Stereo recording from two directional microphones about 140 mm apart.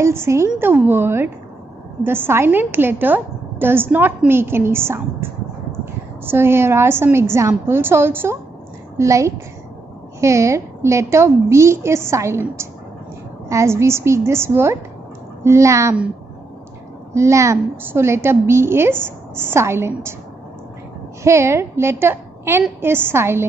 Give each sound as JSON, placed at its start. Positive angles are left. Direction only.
{"t": 0.0, "sound": "a woman's voice", "side_deg": -20}
{"t": 17.1, "sound": "a woman's voice", "side_deg": -20}
{"t": 21.2, "sound": "a woman's voice", "side_deg": -20}